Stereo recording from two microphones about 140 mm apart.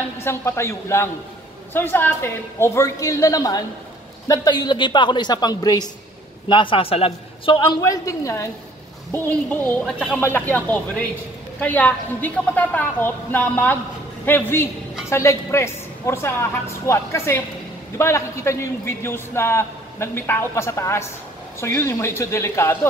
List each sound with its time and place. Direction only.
0.2 s a man's voice: 20° left (ahead or behind)
6.5 s a man's voice: 40° left (ahead or behind); by 22.8 s 20° left (ahead or behind)